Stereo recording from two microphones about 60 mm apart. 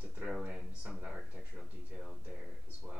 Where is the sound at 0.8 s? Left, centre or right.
Right.